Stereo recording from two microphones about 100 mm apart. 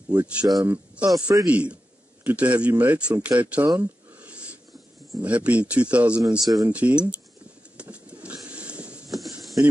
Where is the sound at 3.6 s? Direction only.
40° right (ahead or behind).